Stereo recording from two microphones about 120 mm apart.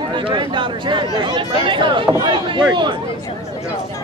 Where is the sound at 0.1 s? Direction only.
40° right (ahead or behind).